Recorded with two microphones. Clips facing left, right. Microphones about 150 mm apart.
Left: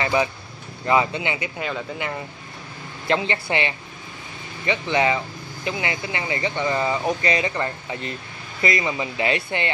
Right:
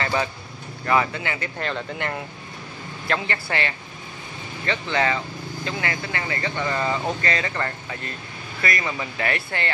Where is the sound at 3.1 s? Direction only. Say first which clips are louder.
Left 4 dB; 20° left (ahead or behind).